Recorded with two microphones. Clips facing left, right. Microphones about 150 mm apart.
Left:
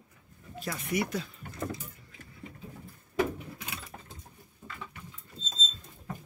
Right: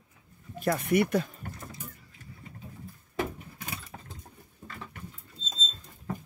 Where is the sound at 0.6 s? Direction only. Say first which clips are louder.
Right 7 dB; 55° right (ahead or behind).